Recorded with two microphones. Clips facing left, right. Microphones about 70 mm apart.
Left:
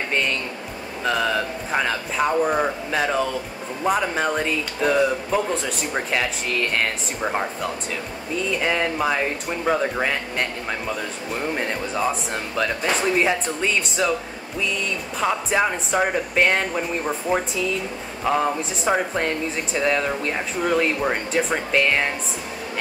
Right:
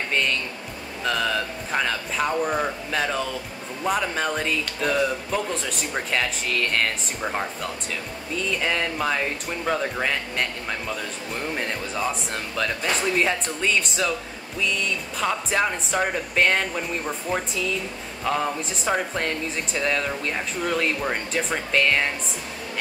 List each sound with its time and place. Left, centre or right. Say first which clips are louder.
0.1 s a man's voice: even; centre
15.1 s speech: left 3 dB; centre